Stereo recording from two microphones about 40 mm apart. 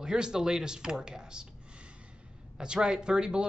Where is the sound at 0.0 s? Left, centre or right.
Centre.